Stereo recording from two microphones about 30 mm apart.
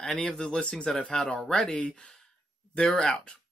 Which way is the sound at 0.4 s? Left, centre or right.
Left.